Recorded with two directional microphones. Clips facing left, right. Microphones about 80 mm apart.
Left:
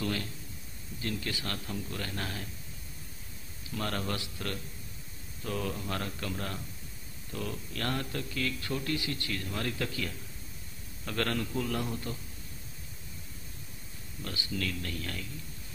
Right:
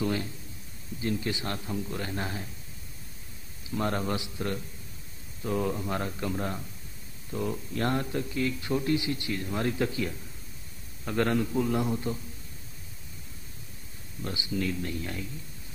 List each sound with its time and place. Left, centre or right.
0.0 s a man's voice: centre
3.7 s a man's voice: right
14.2 s a man's voice: centre